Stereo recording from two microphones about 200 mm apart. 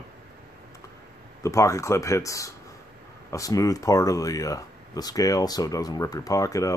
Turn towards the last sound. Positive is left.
turn(degrees=15)  # may be behind; listen again after turning